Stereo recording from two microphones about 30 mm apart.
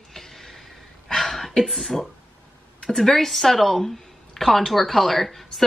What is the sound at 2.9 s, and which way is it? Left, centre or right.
Speech, centre.